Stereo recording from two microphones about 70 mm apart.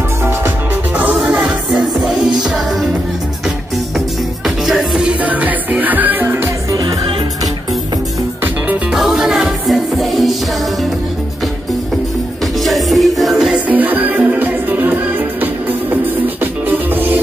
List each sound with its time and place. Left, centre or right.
1.1 s music: centre
1.8 s music: centre
4.6 s music: centre
5.0 s music: right
6.7 s music: right
8.9 s music: centre
12.6 s music: centre
13.7 s music: right